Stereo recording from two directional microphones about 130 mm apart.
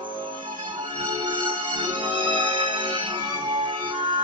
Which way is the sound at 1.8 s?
40° right (ahead or behind).